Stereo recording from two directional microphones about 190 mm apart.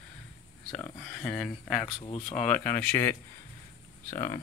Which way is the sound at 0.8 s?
10° left (ahead or behind).